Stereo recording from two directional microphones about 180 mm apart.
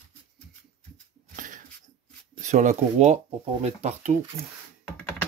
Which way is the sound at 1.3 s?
45° right (ahead or behind).